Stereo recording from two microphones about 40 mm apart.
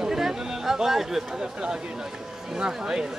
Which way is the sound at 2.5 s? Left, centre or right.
Centre.